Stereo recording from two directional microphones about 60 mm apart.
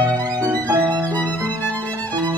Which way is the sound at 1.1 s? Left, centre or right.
Left.